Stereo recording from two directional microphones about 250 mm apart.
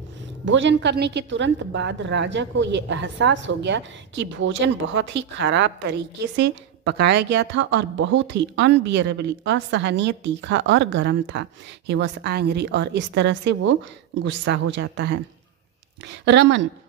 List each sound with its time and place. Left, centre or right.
0.5 s a woman's voice: right
16.3 s a woman's voice: right